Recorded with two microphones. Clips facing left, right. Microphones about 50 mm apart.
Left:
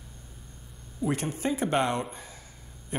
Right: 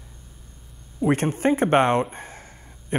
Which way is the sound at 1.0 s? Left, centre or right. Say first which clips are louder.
Right 8 dB; right.